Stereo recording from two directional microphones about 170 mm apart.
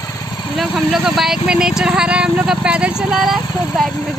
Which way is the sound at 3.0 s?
Centre (ahead or behind).